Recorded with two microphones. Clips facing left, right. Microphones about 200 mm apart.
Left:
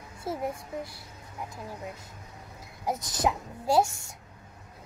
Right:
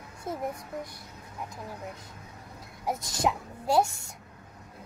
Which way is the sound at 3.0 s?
20° left (ahead or behind).